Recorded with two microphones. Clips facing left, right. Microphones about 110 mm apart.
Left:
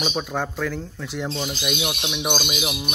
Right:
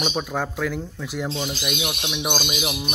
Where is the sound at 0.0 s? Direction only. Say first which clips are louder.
Even; centre (ahead or behind).